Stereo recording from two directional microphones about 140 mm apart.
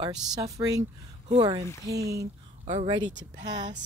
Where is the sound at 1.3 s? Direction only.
40° right (ahead or behind).